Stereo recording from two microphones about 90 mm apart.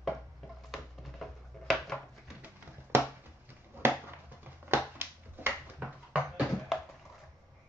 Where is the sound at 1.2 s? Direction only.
Centre (ahead or behind).